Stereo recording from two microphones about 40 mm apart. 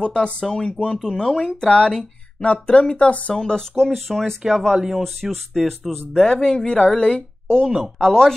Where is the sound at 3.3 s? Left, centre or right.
Centre.